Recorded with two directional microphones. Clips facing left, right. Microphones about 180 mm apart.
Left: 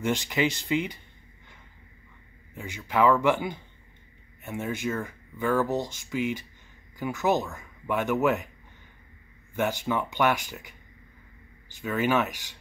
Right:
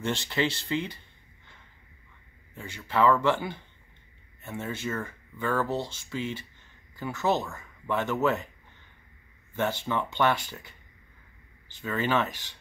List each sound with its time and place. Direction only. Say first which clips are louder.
0.0 s speech: left 2 dB; 15° left (ahead or behind)
9.6 s speech: left 2 dB; 10° left (ahead or behind)
11.8 s speech: left 2 dB; 10° left (ahead or behind)